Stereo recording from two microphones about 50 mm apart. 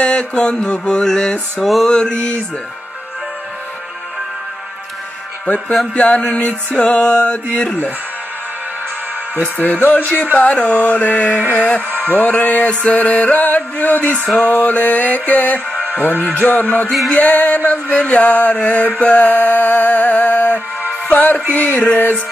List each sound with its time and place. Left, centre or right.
0.0 s mantra: left
0.7 s music: centre
5.9 s music: left
9.4 s music: left
10.3 s music: left